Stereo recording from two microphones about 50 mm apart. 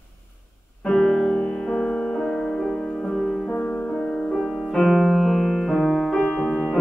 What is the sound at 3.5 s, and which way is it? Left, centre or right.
Music, left.